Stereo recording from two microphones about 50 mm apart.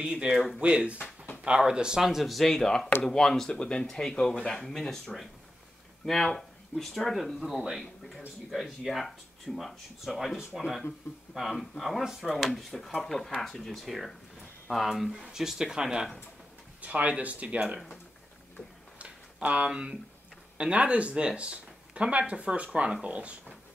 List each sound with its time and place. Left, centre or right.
0.0 s speech: centre
1.0 s a sound: left
1.4 s speech: centre
2.0 s speech: centre
7.7 s a sound: centre
8.5 s speech: centre
16.8 s speech: right
18.9 s a sound: right
20.5 s speech: right